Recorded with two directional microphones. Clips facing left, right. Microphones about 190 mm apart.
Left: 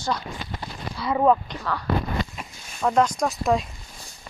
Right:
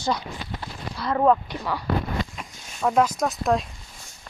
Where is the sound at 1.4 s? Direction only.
10° right (ahead or behind).